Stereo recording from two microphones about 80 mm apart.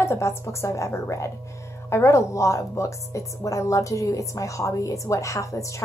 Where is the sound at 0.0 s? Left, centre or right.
Left.